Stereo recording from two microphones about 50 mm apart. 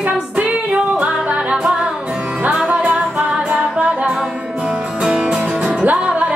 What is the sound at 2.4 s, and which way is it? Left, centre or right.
Music, right.